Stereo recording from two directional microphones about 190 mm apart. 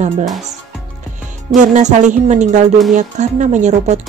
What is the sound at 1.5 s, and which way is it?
Speech, 40° right (ahead or behind).